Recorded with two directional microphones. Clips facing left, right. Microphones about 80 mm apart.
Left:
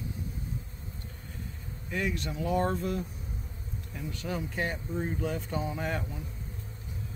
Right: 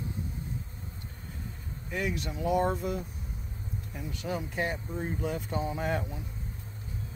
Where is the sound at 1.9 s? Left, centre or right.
Centre.